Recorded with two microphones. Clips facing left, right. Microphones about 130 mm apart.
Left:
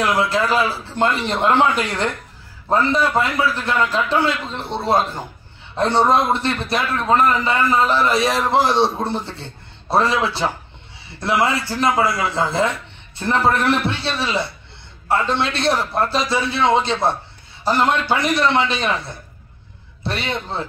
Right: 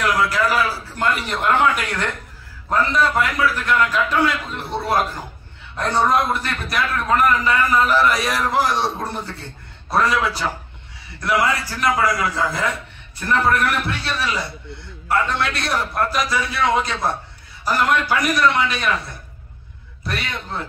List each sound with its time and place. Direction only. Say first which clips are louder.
0.0 s a man's voice: left 1 dB; 25° left (ahead or behind)